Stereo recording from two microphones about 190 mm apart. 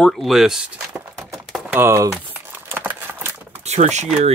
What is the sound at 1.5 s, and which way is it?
Typing, 10° right (ahead or behind).